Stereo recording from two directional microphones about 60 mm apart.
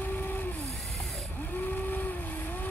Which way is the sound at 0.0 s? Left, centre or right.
Left.